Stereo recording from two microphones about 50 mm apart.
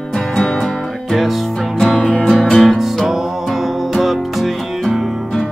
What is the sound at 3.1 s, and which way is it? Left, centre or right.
Music, centre.